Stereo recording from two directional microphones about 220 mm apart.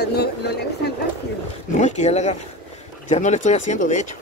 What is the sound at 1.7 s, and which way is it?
Speech, 30° left (ahead or behind).